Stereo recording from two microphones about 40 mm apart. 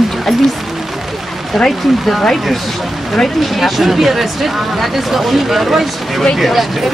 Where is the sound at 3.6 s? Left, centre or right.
Centre.